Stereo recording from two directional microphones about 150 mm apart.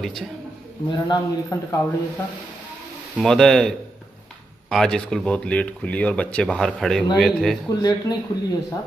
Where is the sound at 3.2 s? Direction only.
5° left (ahead or behind).